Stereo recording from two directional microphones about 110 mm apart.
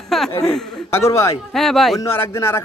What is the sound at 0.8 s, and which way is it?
Speech, 25° left (ahead or behind).